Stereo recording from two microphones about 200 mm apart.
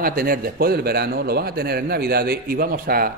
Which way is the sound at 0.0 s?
50° right (ahead or behind).